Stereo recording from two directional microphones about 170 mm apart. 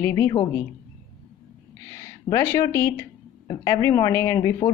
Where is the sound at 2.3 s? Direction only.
15° left (ahead or behind).